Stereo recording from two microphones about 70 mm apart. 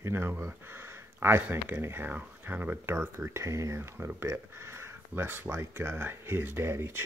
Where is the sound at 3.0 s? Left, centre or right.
Right.